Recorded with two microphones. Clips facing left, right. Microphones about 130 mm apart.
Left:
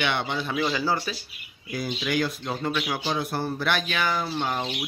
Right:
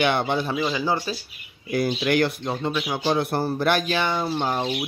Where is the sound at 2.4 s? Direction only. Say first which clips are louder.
Right 3 dB; 20° right (ahead or behind).